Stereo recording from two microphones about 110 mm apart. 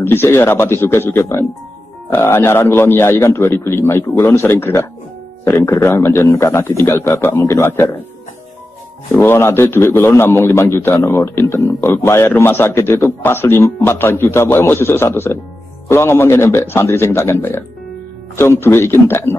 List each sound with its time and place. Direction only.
0.0 s a man's voice: 20° left (ahead or behind)
9.1 s a man's voice: 20° left (ahead or behind)